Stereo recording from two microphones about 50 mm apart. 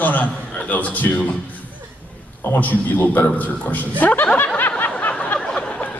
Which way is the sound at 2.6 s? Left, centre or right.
Left.